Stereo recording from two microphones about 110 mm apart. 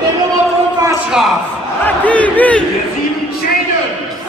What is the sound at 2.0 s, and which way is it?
Battle cry, 15° left (ahead or behind).